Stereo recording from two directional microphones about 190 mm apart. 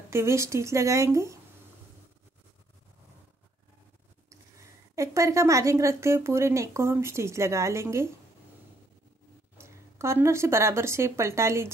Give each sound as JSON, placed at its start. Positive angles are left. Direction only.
{"t": 0.1, "sound": "speech", "side_deg": -15}
{"t": 4.9, "sound": "speech", "side_deg": -15}
{"t": 9.6, "sound": "speech", "side_deg": -15}